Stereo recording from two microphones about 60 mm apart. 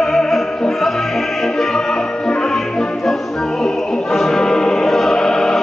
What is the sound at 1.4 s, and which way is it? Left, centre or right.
Opera, centre.